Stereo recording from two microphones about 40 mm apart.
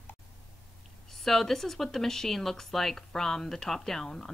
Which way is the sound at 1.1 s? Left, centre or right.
Centre.